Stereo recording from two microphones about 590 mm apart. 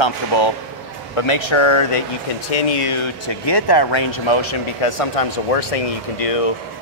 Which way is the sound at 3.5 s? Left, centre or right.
Left.